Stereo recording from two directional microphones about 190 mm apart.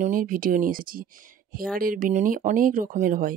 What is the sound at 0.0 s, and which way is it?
Speech, 45° right (ahead or behind).